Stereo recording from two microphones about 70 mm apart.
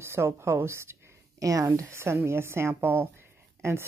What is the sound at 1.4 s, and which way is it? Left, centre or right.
Speech, right.